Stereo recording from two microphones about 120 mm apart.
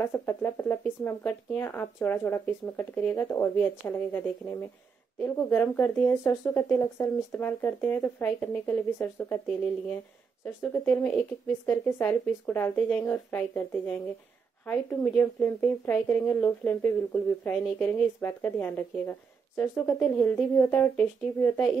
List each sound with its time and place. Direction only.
0.0 s speech: 20° left (ahead or behind)
10.4 s speech: 20° left (ahead or behind)